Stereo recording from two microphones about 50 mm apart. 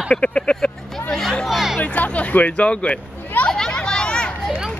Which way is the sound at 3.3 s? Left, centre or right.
Left.